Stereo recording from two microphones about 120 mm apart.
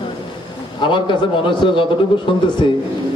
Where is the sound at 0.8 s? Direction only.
40° left (ahead or behind).